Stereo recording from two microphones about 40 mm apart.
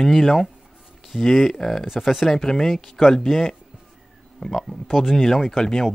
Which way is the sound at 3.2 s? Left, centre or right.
Centre.